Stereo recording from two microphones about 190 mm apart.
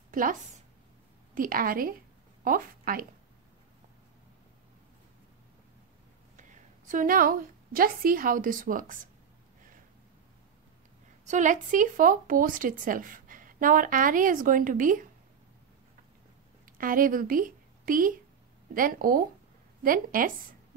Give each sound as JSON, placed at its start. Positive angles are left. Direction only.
{"t": 0.1, "sound": "a woman's voice", "side_deg": -45}
{"t": 6.9, "sound": "speech", "side_deg": -45}
{"t": 11.2, "sound": "speech", "side_deg": -40}
{"t": 16.7, "sound": "speech", "side_deg": -45}